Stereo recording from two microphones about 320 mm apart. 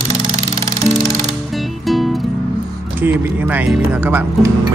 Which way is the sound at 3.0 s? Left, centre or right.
Centre.